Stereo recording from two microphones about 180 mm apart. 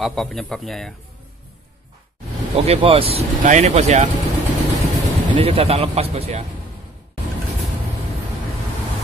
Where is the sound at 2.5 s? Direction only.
35° right (ahead or behind).